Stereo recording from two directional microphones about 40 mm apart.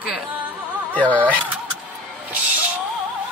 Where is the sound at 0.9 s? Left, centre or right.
Left.